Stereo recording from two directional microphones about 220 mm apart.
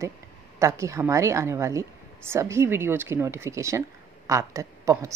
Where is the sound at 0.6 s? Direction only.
15° right (ahead or behind).